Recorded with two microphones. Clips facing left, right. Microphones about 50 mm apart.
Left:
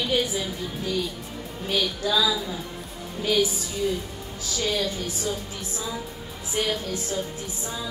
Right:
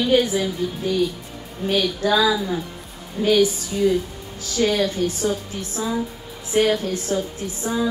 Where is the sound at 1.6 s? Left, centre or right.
Right.